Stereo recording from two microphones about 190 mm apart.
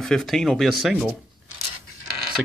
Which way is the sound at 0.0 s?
Centre (ahead or behind).